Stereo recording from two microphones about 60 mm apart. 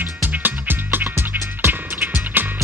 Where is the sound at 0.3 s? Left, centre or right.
Right.